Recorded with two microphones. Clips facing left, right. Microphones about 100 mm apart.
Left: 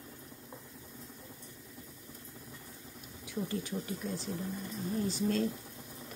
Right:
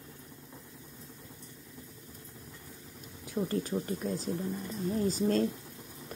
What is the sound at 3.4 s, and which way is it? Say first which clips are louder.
A woman's voice: right 6 dB; 45° right (ahead or behind).